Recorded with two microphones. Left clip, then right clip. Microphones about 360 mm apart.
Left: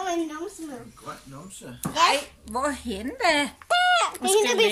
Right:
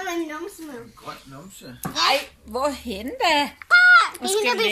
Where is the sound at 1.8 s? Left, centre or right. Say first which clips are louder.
Even; centre.